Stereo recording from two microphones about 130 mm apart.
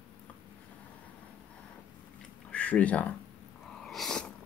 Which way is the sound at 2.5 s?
10° left (ahead or behind).